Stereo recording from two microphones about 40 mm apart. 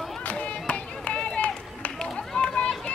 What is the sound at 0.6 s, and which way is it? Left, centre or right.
Run, left.